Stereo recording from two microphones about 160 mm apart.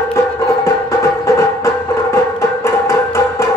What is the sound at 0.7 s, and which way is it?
Music, 20° left (ahead or behind).